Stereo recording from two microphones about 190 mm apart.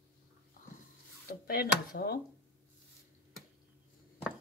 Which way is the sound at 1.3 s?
50° left (ahead or behind).